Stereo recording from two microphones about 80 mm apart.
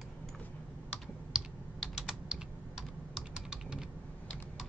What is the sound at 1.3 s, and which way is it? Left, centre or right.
Computer keyboard, centre.